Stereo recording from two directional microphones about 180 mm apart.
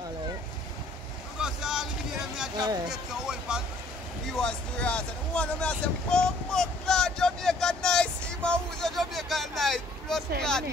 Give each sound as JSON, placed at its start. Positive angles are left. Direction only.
{"t": 1.4, "sound": "boat", "side_deg": -5}
{"t": 2.5, "sound": "speech", "side_deg": -20}
{"t": 2.9, "sound": "a sound", "side_deg": -5}
{"t": 4.3, "sound": "speech", "side_deg": 5}